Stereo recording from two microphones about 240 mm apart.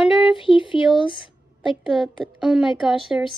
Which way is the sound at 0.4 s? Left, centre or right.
Left.